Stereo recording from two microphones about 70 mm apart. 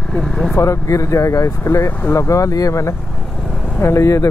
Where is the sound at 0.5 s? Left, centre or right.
Left.